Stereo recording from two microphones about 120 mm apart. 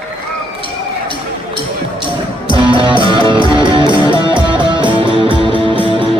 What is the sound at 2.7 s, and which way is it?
Music, 40° right (ahead or behind).